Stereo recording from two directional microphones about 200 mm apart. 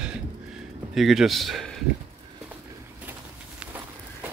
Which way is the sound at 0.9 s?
Centre (ahead or behind).